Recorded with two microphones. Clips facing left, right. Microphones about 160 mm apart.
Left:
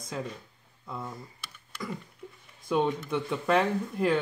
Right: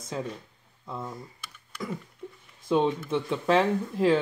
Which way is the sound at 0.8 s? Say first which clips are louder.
Right 2 dB; 15° right (ahead or behind).